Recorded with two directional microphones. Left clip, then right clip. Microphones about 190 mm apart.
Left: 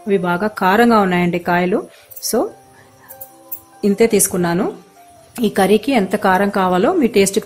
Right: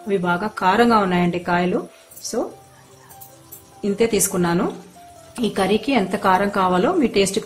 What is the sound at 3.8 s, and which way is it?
A woman's voice, 30° left (ahead or behind).